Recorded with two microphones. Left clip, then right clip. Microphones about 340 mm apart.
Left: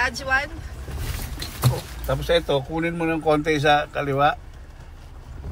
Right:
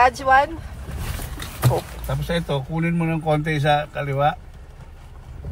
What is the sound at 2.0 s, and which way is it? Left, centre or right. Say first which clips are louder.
A man's voice: left 5 dB; left.